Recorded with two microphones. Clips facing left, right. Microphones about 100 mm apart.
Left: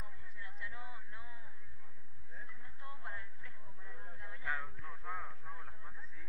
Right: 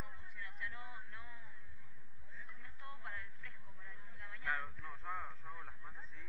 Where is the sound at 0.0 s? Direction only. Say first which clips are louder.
Right 2 dB; 20° left (ahead or behind).